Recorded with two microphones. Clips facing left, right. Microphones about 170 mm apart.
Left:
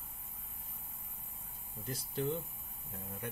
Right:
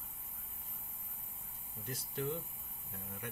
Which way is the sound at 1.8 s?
30° left (ahead or behind).